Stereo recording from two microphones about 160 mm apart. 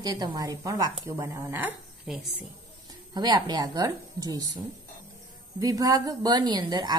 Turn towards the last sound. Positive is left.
turn(degrees=-25)  # may be behind; listen again after turning